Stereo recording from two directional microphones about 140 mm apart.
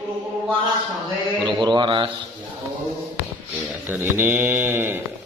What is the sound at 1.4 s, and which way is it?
Speech, 30° right (ahead or behind).